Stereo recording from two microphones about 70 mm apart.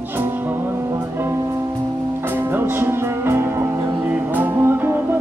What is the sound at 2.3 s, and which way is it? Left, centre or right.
Music, right.